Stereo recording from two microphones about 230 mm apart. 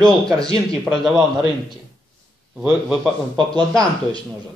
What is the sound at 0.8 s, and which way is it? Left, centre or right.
Speech, centre.